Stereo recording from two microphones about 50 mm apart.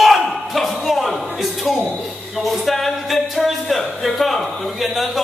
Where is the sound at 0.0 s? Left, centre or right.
Centre.